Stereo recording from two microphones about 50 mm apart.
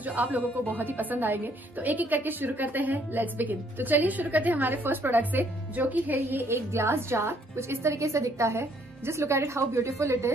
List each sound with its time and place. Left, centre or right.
0.0 s speech: right
6.1 s a woman's voice: right